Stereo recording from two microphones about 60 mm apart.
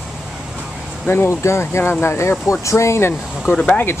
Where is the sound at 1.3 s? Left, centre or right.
Left.